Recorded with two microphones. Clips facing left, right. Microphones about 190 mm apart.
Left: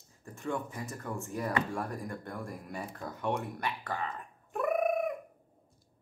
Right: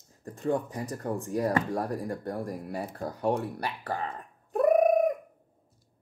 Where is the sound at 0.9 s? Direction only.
35° right (ahead or behind).